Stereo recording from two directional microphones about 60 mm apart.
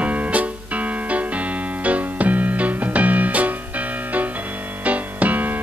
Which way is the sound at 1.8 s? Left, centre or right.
Right.